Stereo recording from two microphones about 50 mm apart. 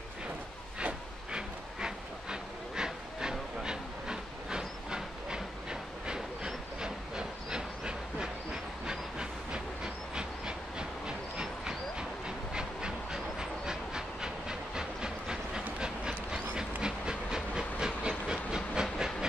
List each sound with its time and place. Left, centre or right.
0.7 s train: centre
10.1 s rail transport: centre
12.5 s train: centre